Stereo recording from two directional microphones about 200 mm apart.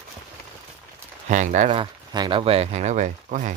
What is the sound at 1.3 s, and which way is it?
Speech, 35° right (ahead or behind).